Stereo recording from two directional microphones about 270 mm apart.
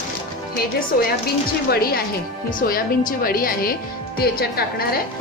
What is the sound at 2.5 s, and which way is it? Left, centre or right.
Speech, left.